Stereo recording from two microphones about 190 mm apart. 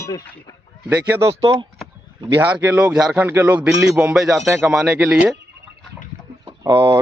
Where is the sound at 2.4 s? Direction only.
10° right (ahead or behind).